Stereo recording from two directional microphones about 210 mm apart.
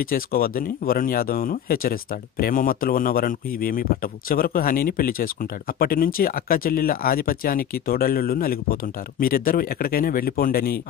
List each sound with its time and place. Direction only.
0.0 s speech: 45° left (ahead or behind)